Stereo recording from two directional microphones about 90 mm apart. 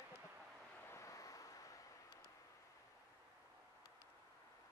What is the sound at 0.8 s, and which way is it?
Vehicle, 35° left (ahead or behind).